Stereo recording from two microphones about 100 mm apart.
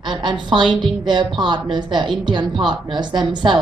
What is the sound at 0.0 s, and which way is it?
A woman's voice, 50° right (ahead or behind).